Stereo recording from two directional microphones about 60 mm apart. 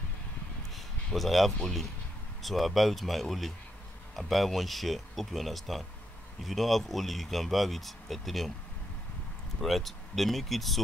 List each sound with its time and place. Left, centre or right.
0.7 s a sound: centre
1.6 s speech: centre
9.6 s speech: centre